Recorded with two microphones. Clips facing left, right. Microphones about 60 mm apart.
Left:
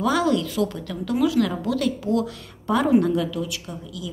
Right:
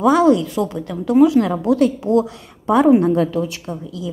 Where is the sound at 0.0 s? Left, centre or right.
Right.